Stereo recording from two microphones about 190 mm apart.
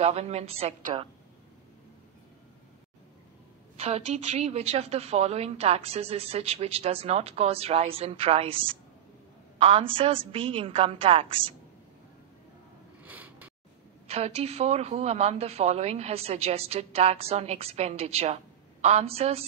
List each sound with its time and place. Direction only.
0.0 s a woman's voice: 35° right (ahead or behind)
3.7 s a woman's voice: 30° right (ahead or behind)
13.0 s a sound: 10° right (ahead or behind)
14.0 s a woman's voice: 35° right (ahead or behind)